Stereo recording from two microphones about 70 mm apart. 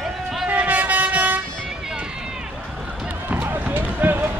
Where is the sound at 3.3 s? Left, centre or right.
Right.